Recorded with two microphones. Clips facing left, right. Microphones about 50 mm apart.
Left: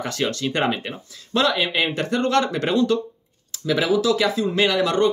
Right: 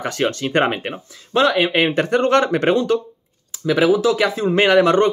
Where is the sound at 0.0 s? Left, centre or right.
Right.